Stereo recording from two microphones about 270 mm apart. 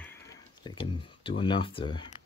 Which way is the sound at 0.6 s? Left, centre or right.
Centre.